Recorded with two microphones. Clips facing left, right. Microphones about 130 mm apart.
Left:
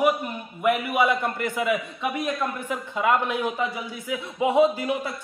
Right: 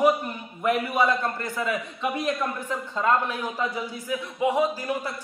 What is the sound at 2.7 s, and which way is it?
A man's voice, 15° left (ahead or behind).